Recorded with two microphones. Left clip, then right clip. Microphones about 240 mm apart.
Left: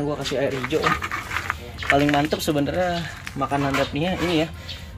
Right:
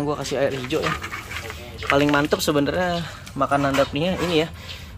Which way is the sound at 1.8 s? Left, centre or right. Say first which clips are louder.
Right 1 dB; centre.